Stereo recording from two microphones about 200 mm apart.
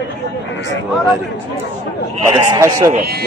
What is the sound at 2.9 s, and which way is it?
Speech, 50° right (ahead or behind).